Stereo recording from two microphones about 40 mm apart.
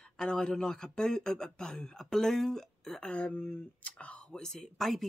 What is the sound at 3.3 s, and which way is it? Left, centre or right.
Speech, left.